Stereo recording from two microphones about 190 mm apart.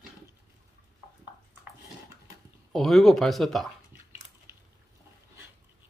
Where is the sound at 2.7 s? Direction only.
Centre (ahead or behind).